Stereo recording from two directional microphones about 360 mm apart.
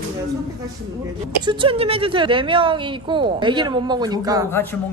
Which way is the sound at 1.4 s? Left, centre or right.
Centre.